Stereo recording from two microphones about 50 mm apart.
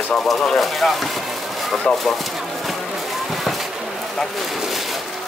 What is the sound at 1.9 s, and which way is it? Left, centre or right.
Speech, left.